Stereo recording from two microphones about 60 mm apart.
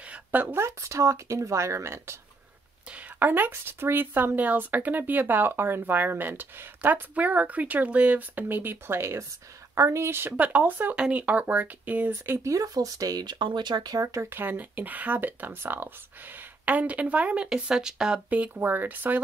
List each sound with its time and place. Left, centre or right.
0.0 s a sound: right
0.6 s speech: right
3.2 s a woman's voice: right
12.4 s speech: right
13.9 s speech: right
14.3 s a woman's voice: right; by 18.2 s centre
18.3 s speech: right